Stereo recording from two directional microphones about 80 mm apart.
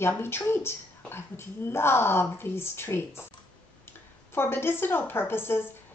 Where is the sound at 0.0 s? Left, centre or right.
Left.